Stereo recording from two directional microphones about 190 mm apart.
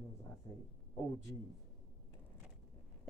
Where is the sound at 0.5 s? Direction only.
15° left (ahead or behind).